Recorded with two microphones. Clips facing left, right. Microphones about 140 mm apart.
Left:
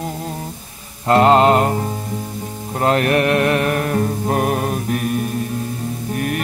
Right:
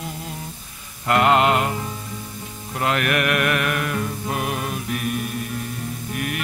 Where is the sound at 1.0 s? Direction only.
35° left (ahead or behind).